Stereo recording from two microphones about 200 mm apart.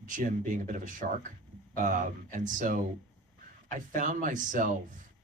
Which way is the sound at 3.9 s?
40° right (ahead or behind).